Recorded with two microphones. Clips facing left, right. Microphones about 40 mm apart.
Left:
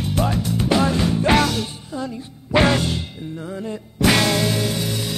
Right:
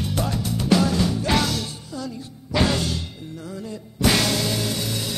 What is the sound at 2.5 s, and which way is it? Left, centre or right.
Music, left.